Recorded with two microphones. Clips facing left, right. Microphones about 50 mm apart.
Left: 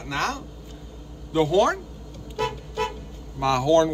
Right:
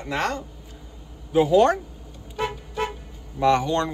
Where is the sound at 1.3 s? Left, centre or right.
Centre.